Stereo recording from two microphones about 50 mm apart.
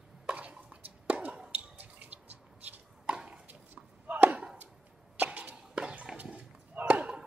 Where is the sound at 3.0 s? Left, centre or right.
Centre.